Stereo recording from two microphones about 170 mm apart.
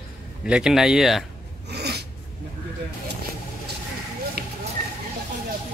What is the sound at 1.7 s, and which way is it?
Filing, 75° right (ahead or behind).